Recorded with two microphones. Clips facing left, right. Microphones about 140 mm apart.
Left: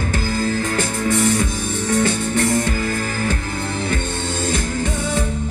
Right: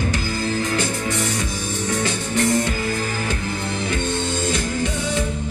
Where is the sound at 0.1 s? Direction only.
50° left (ahead or behind).